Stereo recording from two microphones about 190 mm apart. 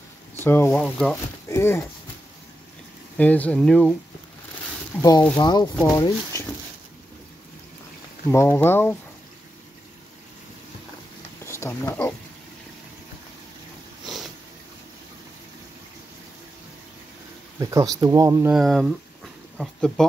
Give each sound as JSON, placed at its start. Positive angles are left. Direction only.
{"t": 0.4, "sound": "speech", "side_deg": 10}
{"t": 3.2, "sound": "speech", "side_deg": 10}
{"t": 4.9, "sound": "speech", "side_deg": 10}
{"t": 5.4, "sound": "speech", "side_deg": 20}
{"t": 8.3, "sound": "speech", "side_deg": 15}
{"t": 11.4, "sound": "speech", "side_deg": 15}
{"t": 14.0, "sound": "sniff", "side_deg": 0}
{"t": 17.6, "sound": "speech", "side_deg": -15}
{"t": 18.5, "sound": "speech", "side_deg": 0}